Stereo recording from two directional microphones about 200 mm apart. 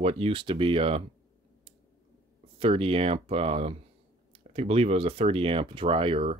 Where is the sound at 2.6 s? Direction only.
30° right (ahead or behind).